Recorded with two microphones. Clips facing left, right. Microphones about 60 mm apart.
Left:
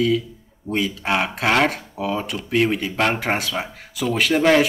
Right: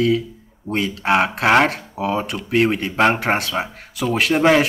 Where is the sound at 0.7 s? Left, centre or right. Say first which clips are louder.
Right 1 dB; right.